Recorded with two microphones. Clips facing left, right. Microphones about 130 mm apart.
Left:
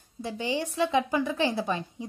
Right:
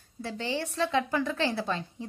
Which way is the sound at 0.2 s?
15° left (ahead or behind).